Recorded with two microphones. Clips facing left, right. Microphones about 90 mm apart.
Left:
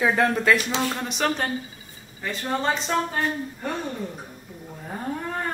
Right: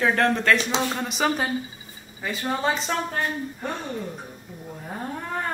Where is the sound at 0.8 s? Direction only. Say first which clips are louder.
Right 1 dB; 5° right (ahead or behind).